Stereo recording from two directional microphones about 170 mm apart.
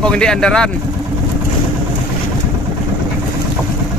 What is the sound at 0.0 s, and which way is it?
Speech, 5° left (ahead or behind).